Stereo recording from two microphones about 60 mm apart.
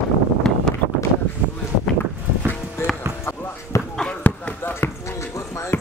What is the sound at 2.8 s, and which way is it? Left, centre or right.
Music, left.